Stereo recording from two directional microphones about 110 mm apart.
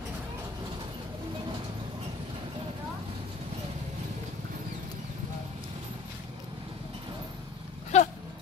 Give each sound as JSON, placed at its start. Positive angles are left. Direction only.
{"t": 7.9, "sound": "dog", "side_deg": 90}